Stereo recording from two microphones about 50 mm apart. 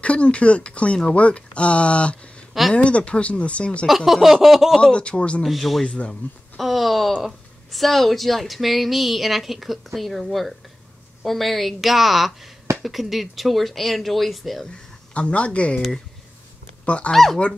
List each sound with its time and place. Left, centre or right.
0.0 s speech: left
3.8 s a woman's voice: centre
4.9 s speech: left
5.4 s a woman's voice: centre
5.9 s speech: left
6.6 s a woman's voice: centre
7.1 s speech: centre
7.7 s a woman's voice: centre
15.1 s speech: left
16.8 s speech: left
17.1 s a woman's voice: centre